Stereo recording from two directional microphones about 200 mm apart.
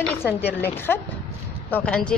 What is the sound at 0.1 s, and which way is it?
A woman's voice, 10° left (ahead or behind).